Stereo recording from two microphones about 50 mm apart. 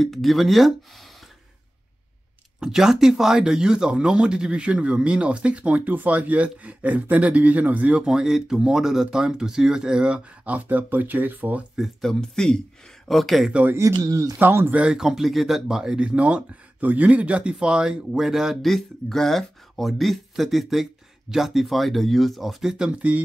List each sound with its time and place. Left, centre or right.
0.0 s speech: centre
2.6 s speech: centre; by 7.9 s right
7.9 s speech: centre; by 11.6 s right
12.0 s speech: centre
13.1 s speech: centre
14.4 s speech: right
14.7 s speech: right
15.0 s speech: centre
16.0 s speech: right
18.2 s speech: centre
22.8 s speech: right